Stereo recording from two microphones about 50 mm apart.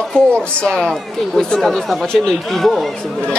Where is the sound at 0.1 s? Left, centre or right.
Centre.